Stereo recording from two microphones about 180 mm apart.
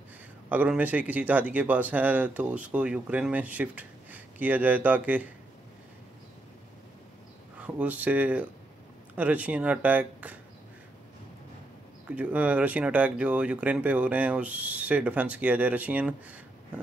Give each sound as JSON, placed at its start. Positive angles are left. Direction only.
{"t": 0.5, "sound": "speech", "side_deg": -10}
{"t": 7.6, "sound": "speech", "side_deg": -10}
{"t": 12.1, "sound": "speech", "side_deg": -10}